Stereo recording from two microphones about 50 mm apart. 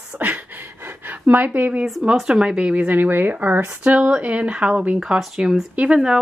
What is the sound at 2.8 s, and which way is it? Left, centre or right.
Speech, right.